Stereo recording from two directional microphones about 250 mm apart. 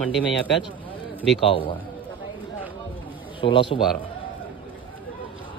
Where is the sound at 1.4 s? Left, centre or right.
Left.